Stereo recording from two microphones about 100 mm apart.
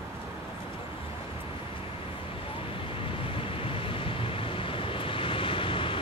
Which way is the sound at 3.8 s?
65° left (ahead or behind).